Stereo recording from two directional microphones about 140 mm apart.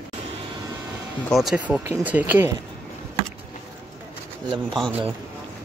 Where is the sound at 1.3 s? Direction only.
Centre (ahead or behind).